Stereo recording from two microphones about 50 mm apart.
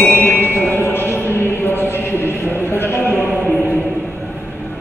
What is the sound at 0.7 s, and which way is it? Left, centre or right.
Music, left.